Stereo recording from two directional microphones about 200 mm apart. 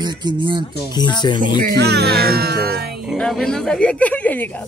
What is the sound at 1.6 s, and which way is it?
Music, 50° right (ahead or behind).